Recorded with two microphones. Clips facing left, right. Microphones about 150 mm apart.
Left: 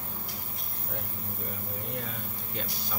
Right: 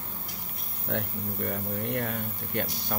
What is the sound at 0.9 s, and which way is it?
Speech, 75° right (ahead or behind).